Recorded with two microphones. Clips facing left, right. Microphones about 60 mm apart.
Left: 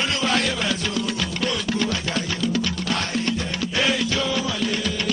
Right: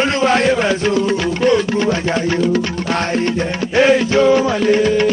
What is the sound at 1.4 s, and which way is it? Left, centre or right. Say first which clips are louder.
Music: right 10 dB; right.